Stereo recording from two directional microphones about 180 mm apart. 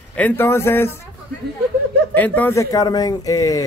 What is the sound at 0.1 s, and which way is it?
Speech, 10° left (ahead or behind).